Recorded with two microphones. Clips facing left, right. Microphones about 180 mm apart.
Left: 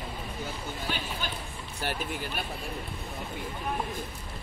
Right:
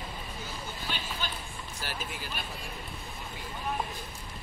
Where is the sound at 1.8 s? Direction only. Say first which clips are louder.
Left 7 dB; 60° left (ahead or behind).